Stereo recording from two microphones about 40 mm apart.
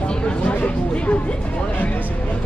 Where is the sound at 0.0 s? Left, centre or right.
Left.